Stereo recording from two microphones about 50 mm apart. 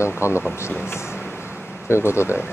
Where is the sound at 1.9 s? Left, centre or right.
Left.